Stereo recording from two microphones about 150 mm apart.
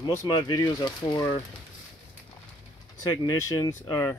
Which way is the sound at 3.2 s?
25° left (ahead or behind).